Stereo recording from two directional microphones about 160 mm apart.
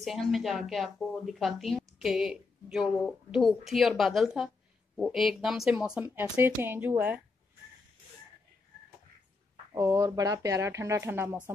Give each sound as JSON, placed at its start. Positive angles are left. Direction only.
{"t": 0.0, "sound": "speech", "side_deg": 0}
{"t": 9.8, "sound": "speech", "side_deg": -20}